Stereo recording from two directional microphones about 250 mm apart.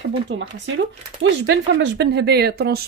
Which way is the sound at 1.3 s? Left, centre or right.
Right.